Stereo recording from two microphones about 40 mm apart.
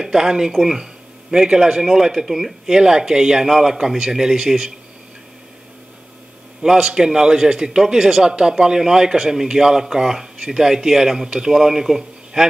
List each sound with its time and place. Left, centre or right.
0.0 s speech: centre
6.6 s speech: centre
11.2 s speech: right
11.5 s a man's voice: centre